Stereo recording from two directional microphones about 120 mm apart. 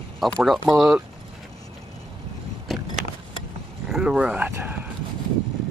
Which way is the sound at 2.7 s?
Centre (ahead or behind).